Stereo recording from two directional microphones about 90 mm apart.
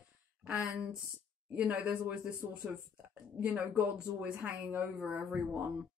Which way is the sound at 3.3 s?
20° right (ahead or behind).